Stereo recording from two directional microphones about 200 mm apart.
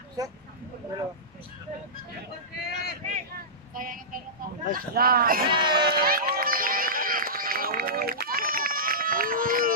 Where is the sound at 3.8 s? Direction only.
45° right (ahead or behind).